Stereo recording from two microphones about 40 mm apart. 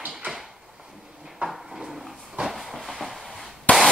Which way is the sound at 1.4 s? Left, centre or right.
Right.